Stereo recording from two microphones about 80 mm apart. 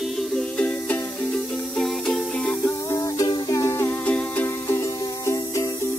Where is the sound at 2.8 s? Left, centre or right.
Left.